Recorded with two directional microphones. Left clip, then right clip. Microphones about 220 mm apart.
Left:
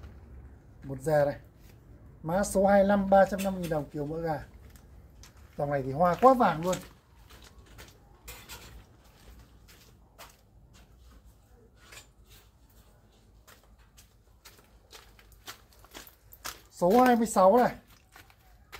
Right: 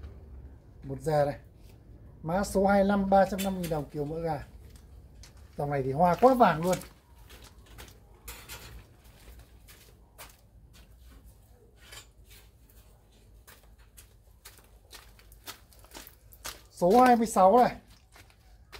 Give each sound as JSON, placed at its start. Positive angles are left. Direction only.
{"t": 0.8, "sound": "speech", "side_deg": 0}
{"t": 5.6, "sound": "speech", "side_deg": -15}
{"t": 6.2, "sound": "speech", "side_deg": -35}
{"t": 16.4, "sound": "speech", "side_deg": 0}